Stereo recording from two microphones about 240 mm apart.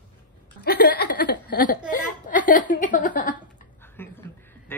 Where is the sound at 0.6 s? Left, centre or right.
Left.